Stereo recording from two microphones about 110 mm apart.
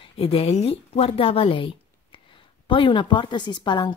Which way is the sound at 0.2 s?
60° left (ahead or behind).